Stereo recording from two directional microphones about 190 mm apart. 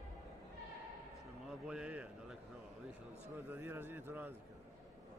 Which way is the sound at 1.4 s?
5° right (ahead or behind).